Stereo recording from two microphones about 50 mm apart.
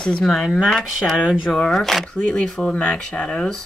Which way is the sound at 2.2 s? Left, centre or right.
Left.